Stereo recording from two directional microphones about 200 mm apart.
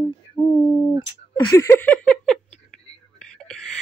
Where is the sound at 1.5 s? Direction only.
15° left (ahead or behind).